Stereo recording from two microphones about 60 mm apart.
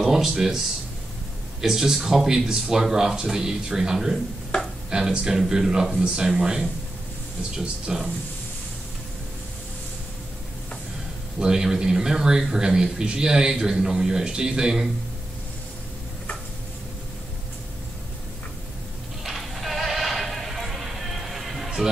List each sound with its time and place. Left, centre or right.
0.0 s a man's voice: centre
7.6 s a man's voice: centre
11.3 s a man's voice: centre
19.2 s music: centre